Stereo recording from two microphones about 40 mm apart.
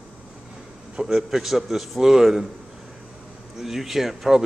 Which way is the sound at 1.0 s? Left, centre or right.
Centre.